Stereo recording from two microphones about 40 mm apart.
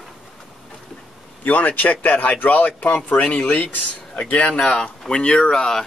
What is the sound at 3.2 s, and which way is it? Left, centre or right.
Speech, left.